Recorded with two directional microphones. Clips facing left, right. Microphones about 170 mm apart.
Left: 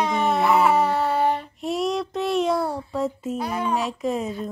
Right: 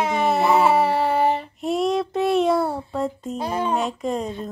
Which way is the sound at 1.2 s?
Centre (ahead or behind).